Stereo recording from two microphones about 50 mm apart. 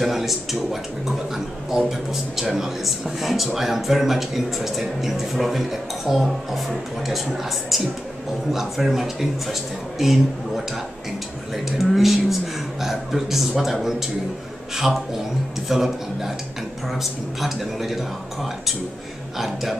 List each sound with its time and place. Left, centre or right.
0.0 s speech: centre
15.7 s a man's voice: centre